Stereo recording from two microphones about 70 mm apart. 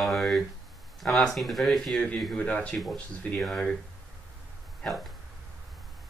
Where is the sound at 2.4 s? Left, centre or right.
Centre.